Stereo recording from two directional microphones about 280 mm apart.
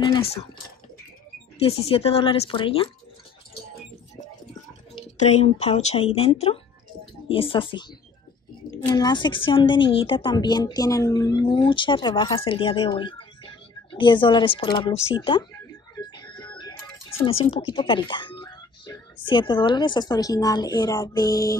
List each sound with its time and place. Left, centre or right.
0.0 s a woman's voice: centre
1.6 s speech: left
4.9 s speech: left
8.8 s a woman's voice: centre
16.2 s music: centre
17.5 s speech: centre